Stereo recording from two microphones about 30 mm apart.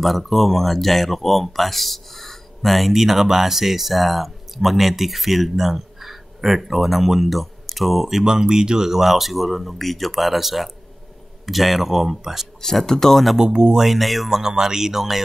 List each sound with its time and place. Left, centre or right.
0.0 s speech: centre
2.9 s speech: centre
12.8 s speech: centre
13.4 s speech: right
13.9 s speech: centre
14.6 s speech: centre